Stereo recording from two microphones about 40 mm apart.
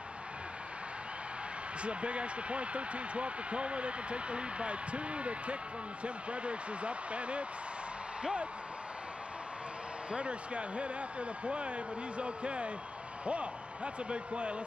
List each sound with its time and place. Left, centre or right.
1.8 s speech: right
10.1 s a man's voice: right